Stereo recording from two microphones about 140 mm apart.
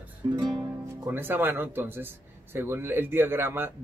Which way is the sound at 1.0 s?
15° right (ahead or behind).